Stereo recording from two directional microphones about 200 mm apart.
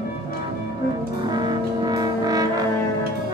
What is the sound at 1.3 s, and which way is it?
Music, 20° right (ahead or behind).